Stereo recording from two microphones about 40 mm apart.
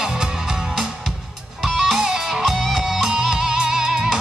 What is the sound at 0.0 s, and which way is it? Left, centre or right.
Music, centre.